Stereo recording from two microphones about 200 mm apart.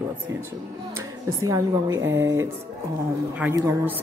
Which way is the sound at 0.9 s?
15° right (ahead or behind).